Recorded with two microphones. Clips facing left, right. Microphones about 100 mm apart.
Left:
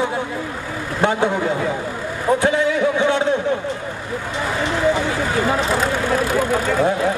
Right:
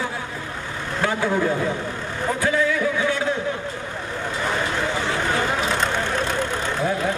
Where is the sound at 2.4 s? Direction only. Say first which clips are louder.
Left 1 dB; 25° left (ahead or behind).